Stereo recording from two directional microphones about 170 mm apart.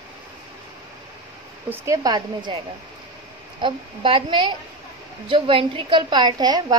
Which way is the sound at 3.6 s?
30° right (ahead or behind).